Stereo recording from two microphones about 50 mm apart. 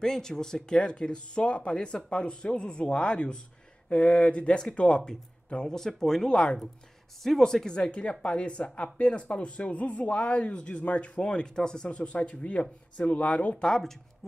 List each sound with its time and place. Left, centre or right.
0.0 s speech: centre
7.2 s speech: centre; by 13.6 s left
13.6 s speech: centre